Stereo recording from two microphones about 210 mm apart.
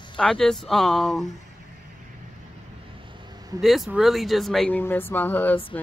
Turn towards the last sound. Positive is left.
turn(degrees=10)  # may be behind; listen again after turning